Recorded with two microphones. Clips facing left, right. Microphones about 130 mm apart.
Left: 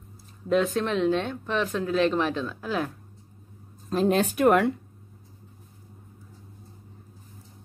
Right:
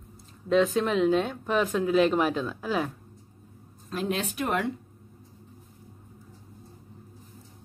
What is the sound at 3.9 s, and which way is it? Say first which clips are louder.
Speech: left 7 dB; 40° left (ahead or behind).